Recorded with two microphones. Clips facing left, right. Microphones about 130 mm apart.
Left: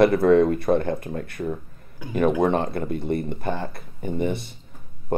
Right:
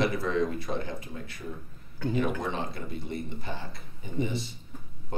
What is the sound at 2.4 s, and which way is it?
Speech, 55° left (ahead or behind).